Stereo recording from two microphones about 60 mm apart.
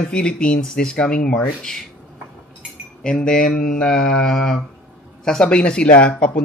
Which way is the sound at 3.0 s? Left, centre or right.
Centre.